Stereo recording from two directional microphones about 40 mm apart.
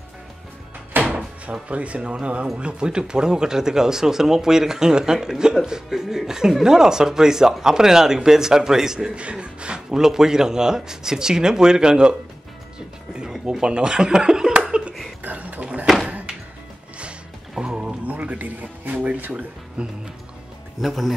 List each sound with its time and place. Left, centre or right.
1.0 s door: right
2.1 s a man's voice: right
9.1 s a man's voice: right
9.9 s speech: centre
13.3 s speech: centre
14.5 s laughter: right
15.2 s a sound: right
15.6 s a sound: right
17.6 s a sound: right
18.0 s a sound: right
18.9 s a man's voice: right
20.8 s speech: centre